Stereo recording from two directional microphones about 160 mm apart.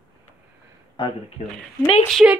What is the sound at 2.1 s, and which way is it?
Speech, 5° right (ahead or behind).